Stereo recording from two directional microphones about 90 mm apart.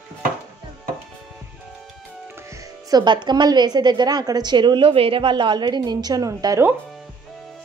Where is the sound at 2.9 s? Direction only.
60° right (ahead or behind); by 6.5 s 45° right (ahead or behind).